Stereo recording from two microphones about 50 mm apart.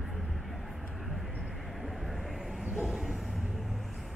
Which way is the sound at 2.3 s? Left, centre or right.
Centre.